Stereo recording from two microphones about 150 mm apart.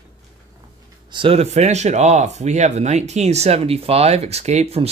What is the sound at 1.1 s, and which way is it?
Speech, 35° right (ahead or behind).